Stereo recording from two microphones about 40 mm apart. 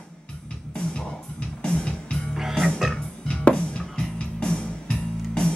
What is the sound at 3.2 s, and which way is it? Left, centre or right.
Music, left.